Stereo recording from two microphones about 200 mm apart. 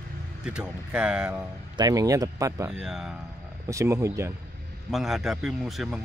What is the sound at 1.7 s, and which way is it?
Speech, 20° right (ahead or behind).